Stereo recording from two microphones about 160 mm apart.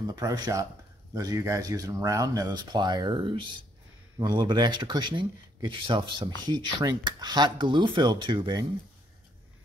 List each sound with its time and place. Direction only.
0.0 s speech: 20° right (ahead or behind)